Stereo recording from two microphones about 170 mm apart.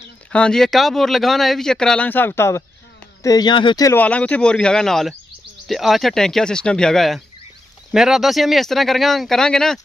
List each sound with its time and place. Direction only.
0.3 s speech: 5° left (ahead or behind); by 4.0 s 20° left (ahead or behind)
4.0 s speech: 10° left (ahead or behind)